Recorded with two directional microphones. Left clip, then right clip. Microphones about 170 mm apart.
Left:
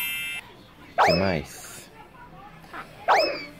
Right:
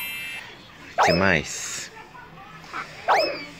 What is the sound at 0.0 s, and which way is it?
Car alarm, centre (ahead or behind).